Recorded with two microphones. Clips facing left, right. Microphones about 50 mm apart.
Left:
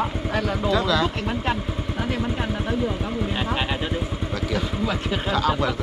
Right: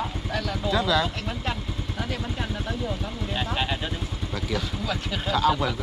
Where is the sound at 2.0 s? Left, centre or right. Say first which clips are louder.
Left 5 dB; centre.